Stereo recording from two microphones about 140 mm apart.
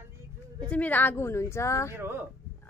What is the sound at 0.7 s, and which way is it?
Speech, 10° left (ahead or behind).